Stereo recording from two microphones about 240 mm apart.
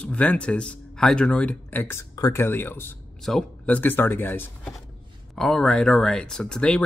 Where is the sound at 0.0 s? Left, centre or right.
Centre.